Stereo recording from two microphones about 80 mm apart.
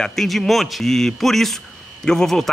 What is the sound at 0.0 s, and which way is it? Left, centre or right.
Speech, centre.